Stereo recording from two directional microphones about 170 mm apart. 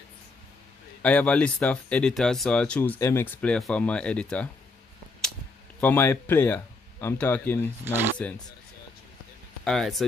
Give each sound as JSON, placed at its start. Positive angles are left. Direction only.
{"t": 1.0, "sound": "speech", "side_deg": 5}
{"t": 5.8, "sound": "speech", "side_deg": 10}
{"t": 7.8, "sound": "speech", "side_deg": -15}
{"t": 9.7, "sound": "speech", "side_deg": 0}